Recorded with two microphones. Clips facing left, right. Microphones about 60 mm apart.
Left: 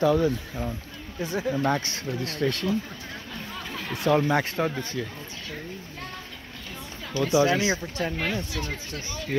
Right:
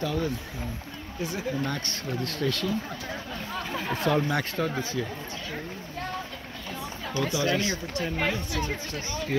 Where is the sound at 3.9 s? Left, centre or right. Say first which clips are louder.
Left 4 dB; centre.